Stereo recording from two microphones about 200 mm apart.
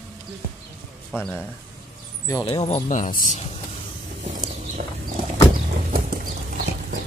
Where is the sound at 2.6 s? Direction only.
35° left (ahead or behind).